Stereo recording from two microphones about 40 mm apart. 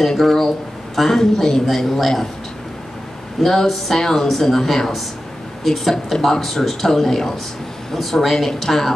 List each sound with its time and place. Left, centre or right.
0.0 s a man's voice: centre
3.4 s a man's voice: centre